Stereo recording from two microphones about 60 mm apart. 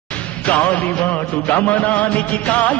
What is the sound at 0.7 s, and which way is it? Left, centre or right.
Music, left.